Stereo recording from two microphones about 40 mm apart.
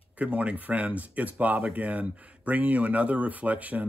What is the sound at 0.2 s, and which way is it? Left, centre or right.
Speech, right.